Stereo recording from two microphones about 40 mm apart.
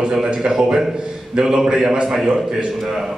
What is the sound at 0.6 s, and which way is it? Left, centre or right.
Speech, centre.